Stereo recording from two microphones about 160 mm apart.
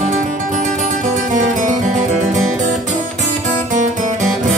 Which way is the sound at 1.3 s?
50° right (ahead or behind).